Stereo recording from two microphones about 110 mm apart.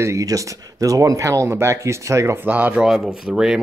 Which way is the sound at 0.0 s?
30° right (ahead or behind).